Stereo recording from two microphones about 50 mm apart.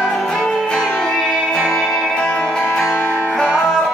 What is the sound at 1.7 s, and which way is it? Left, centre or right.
Music, centre.